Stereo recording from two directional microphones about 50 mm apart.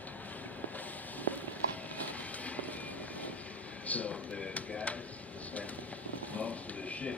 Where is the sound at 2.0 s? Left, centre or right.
Left.